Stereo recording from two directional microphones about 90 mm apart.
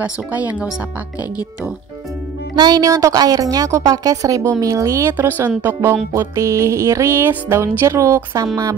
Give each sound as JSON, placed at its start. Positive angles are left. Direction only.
{"t": 0.0, "sound": "speech", "side_deg": -15}
{"t": 2.5, "sound": "a woman's voice", "side_deg": -50}
{"t": 5.1, "sound": "a woman's voice", "side_deg": -25}